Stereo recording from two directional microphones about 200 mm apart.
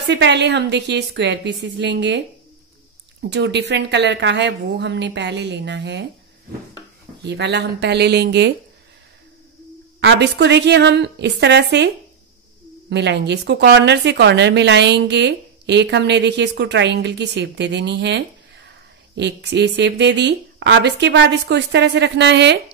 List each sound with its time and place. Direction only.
0.1 s a woman's voice: 60° right (ahead or behind)
7.2 s a woman's voice: 60° right (ahead or behind)
9.9 s a woman's voice: 60° right (ahead or behind)
12.9 s a woman's voice: 60° right (ahead or behind)